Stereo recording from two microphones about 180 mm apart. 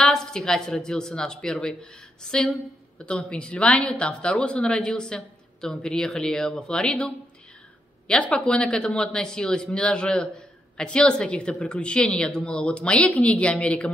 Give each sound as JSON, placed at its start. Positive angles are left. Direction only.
{"t": 0.0, "sound": "a woman's voice", "side_deg": 5}
{"t": 8.1, "sound": "speech", "side_deg": 5}